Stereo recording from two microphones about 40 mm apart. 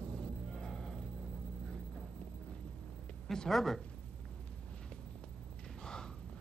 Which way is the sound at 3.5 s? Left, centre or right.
Centre.